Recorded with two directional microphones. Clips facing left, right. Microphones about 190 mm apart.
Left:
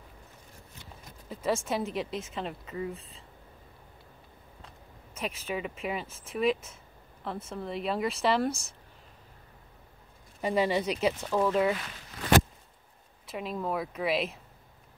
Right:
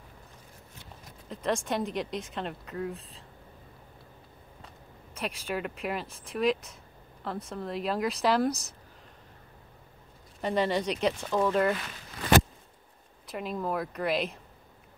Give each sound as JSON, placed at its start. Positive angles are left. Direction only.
{"t": 1.3, "sound": "a woman's voice", "side_deg": 5}
{"t": 5.2, "sound": "a woman's voice", "side_deg": 0}
{"t": 10.4, "sound": "a woman's voice", "side_deg": 5}
{"t": 13.3, "sound": "a woman's voice", "side_deg": 0}